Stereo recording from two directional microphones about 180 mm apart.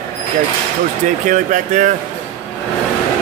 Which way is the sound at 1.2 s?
45° right (ahead or behind).